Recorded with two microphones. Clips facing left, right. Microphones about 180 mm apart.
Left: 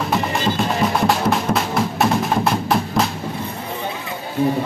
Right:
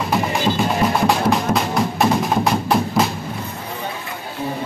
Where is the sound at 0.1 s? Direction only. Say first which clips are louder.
Right 2 dB; centre (ahead or behind).